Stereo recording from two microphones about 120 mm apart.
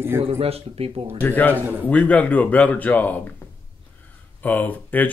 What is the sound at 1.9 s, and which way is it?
Speech, 10° left (ahead or behind).